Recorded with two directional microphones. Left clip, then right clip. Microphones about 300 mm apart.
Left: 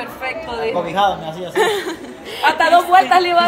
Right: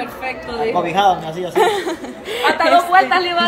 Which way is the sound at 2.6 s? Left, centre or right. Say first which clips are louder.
Left 1 dB; left.